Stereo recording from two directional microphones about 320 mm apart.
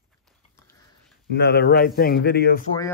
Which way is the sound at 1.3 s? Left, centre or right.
Left.